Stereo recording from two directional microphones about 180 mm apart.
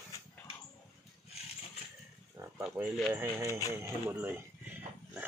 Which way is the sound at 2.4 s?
20° right (ahead or behind).